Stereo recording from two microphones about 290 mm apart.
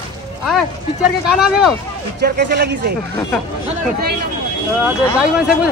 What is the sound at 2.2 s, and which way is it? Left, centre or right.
Speech, right.